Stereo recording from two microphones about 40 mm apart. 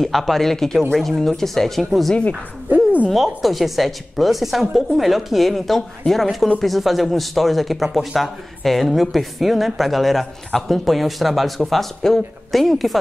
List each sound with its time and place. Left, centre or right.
0.0 s speech: centre
2.7 s a sound: right
3.2 s speech: centre